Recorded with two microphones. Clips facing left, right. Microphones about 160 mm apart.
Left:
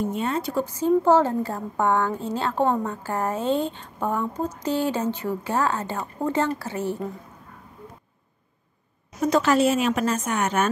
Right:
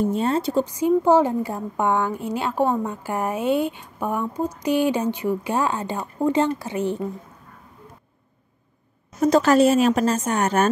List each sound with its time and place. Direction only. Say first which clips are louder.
0.1 s speech: right 4 dB; 35° right (ahead or behind)
9.3 s a woman's voice: right 4 dB; 40° right (ahead or behind)